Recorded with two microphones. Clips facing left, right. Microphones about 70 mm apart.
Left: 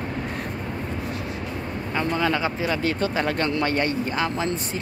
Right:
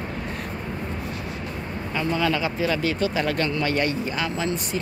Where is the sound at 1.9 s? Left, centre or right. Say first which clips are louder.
Even; left.